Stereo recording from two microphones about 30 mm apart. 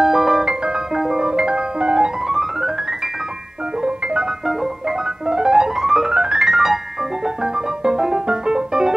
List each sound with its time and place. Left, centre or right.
0.0 s music: centre
0.4 s music: right
0.9 s marimba: centre
1.2 s music: right
2.2 s music: centre
3.8 s music: right
6.5 s music: centre
7.4 s music: right